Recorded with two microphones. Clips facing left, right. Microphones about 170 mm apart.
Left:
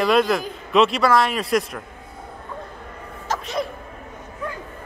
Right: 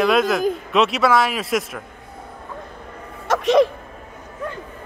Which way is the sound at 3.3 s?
85° right.